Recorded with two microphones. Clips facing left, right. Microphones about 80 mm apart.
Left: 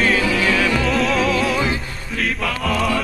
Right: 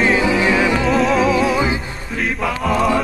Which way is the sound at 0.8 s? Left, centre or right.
Centre.